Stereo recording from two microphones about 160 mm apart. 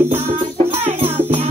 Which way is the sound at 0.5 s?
40° right (ahead or behind).